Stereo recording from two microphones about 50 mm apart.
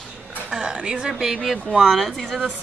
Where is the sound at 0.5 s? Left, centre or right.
Centre.